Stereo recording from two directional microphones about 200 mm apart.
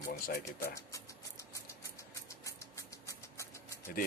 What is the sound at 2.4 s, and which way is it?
Rodents, 15° left (ahead or behind).